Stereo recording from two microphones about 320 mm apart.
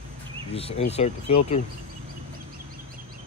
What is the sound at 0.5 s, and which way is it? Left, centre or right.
Speech, centre.